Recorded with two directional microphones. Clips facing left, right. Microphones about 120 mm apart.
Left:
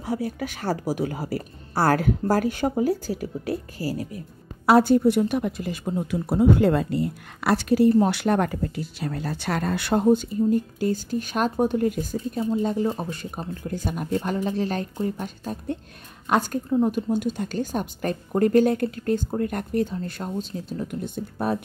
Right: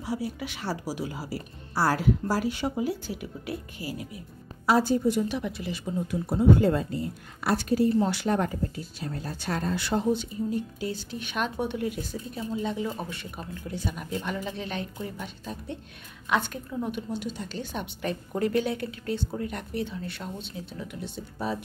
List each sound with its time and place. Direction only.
0.0 s speech: 50° left (ahead or behind)
4.6 s speech: 65° left (ahead or behind)
6.0 s a woman's voice: 90° left
8.0 s speech: 65° left (ahead or behind)